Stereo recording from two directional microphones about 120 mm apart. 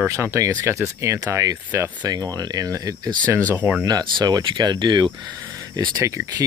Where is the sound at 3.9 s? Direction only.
35° right (ahead or behind).